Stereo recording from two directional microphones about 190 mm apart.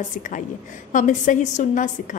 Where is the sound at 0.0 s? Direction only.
40° left (ahead or behind).